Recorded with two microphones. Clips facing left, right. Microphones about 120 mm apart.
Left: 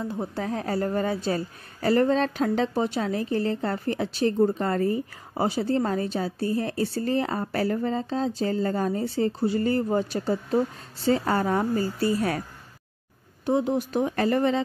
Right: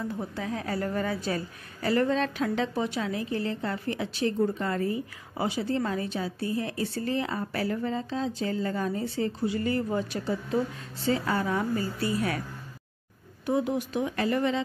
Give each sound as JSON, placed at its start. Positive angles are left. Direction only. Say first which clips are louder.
{"t": 0.0, "sound": "a woman's voice", "louder": "left 3 dB", "side_deg": 25}
{"t": 0.3, "sound": "a woman's voice", "louder": "left 4 dB", "side_deg": 40}
{"t": 13.5, "sound": "a woman's voice", "louder": "left 3 dB", "side_deg": 30}